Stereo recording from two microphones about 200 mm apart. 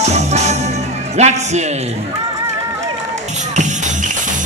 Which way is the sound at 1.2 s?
35° right (ahead or behind).